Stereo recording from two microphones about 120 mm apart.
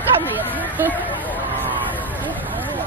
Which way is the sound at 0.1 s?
45° right (ahead or behind).